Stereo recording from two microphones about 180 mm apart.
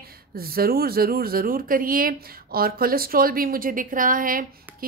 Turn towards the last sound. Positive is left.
turn(degrees=-50)  # may be behind; listen again after turning